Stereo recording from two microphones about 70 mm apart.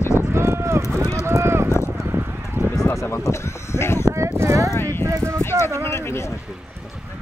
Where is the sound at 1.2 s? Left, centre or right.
Right.